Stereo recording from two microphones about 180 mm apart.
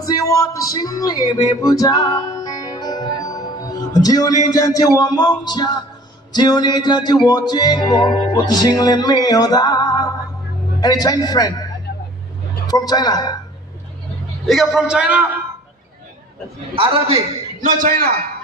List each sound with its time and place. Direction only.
0.0 s speech: 20° left (ahead or behind)
1.5 s music: 20° left (ahead or behind)
12.6 s music: 20° left (ahead or behind)
14.4 s a man's voice: centre (ahead or behind)
16.7 s a man's voice: 30° right (ahead or behind)
17.6 s a man's voice: 50° right (ahead or behind)